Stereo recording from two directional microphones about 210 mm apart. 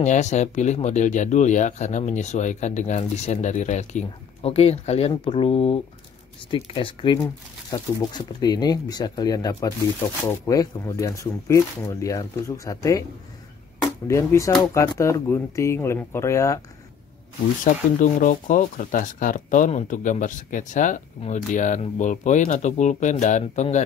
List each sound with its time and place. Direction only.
0.0 s speech: 35° left (ahead or behind); by 13.0 s 15° left (ahead or behind)
14.0 s speech: 15° left (ahead or behind)
17.6 s speech: 40° left (ahead or behind)